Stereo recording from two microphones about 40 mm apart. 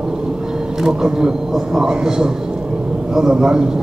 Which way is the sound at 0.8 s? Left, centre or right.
Centre.